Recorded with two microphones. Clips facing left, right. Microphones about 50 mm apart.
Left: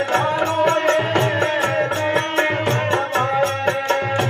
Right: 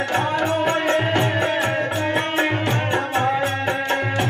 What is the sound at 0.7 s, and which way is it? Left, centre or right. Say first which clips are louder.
Music: left 2 dB; centre.